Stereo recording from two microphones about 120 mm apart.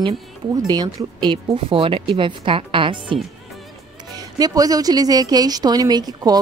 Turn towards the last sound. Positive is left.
turn(degrees=-35)  # may be behind; listen again after turning